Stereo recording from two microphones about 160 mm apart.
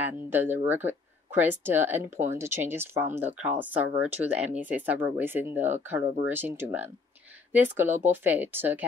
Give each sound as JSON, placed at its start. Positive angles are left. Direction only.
{"t": 0.0, "sound": "speech", "side_deg": -15}
{"t": 3.1, "sound": "speech", "side_deg": -45}
{"t": 3.4, "sound": "speech", "side_deg": -10}